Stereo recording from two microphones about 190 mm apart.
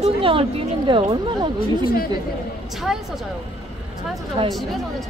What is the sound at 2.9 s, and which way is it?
Speech, centre (ahead or behind).